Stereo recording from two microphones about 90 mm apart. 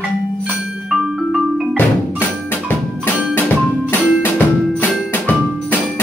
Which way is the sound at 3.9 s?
20° left (ahead or behind).